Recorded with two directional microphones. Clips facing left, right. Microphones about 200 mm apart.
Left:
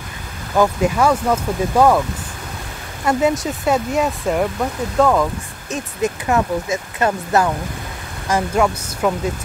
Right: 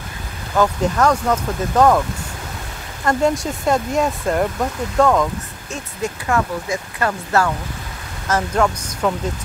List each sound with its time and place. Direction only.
0.6 s speech: 10° left (ahead or behind)
3.1 s speech: 5° left (ahead or behind)
5.7 s speech: 20° left (ahead or behind)